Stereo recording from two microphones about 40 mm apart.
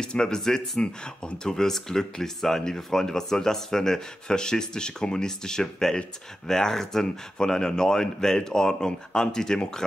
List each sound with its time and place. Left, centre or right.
0.0 s speech: centre